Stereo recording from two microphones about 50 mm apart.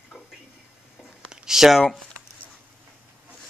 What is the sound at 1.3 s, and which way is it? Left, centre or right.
Speech, centre.